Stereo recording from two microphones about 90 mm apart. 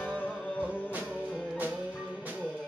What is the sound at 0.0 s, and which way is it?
Music, 15° left (ahead or behind).